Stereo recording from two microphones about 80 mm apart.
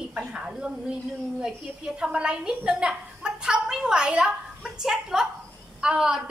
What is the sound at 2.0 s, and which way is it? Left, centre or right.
A woman's voice, centre.